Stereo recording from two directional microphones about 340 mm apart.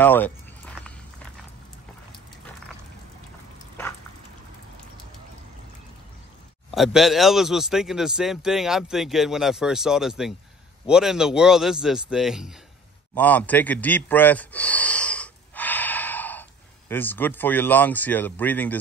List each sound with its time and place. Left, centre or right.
0.0 s a sound: centre
6.7 s speech: centre
13.1 s gasp: centre
16.9 s speech: centre